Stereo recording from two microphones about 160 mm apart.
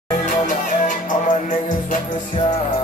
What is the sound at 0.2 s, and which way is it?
Music, 50° left (ahead or behind).